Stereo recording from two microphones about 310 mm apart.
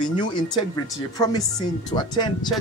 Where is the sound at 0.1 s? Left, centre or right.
Centre.